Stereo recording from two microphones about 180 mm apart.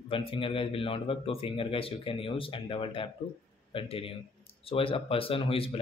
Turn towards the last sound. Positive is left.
turn(degrees=30)  # may be behind; listen again after turning